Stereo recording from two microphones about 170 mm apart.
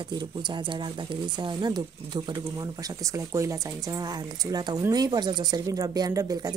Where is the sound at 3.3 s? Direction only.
20° right (ahead or behind).